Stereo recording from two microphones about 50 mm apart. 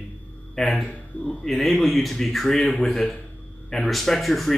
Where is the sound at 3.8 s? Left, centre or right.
Centre.